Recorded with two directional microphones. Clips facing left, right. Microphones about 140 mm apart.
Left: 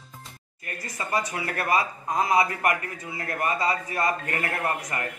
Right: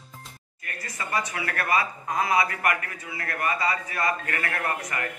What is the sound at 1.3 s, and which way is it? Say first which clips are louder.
A man's voice: left 1 dB; 25° left (ahead or behind).